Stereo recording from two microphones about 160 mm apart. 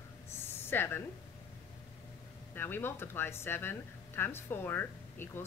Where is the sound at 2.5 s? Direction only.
15° left (ahead or behind).